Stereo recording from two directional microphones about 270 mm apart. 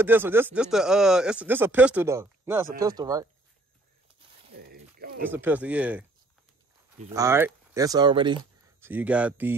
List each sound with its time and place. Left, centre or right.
0.0 s speech: centre
4.5 s a sound: right
5.2 s speech: centre
7.2 s speech: centre
8.8 s speech: centre